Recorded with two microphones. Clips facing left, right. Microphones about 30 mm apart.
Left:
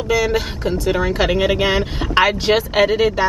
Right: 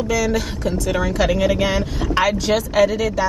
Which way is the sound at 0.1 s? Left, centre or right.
Left.